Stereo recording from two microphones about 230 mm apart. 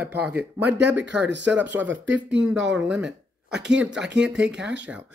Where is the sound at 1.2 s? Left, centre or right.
Right.